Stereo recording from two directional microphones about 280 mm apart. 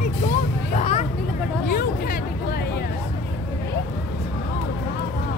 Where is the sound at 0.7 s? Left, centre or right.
Left.